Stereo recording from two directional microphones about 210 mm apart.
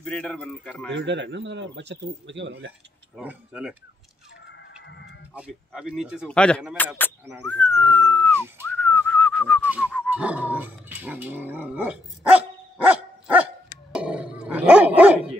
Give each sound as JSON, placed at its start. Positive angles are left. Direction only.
{"t": 0.0, "sound": "a man's voice", "side_deg": 5}
{"t": 0.9, "sound": "speech", "side_deg": -55}
{"t": 3.2, "sound": "a man's voice", "side_deg": -5}
{"t": 4.5, "sound": "a sound", "side_deg": 60}
{"t": 5.3, "sound": "a man's voice", "side_deg": 0}
{"t": 8.1, "sound": "a sound", "side_deg": 5}
{"t": 8.7, "sound": "whistling", "side_deg": 5}
{"t": 9.7, "sound": "dog", "side_deg": -5}